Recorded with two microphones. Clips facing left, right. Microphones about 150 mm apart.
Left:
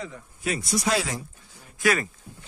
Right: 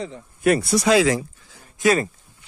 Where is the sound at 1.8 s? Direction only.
25° right (ahead or behind).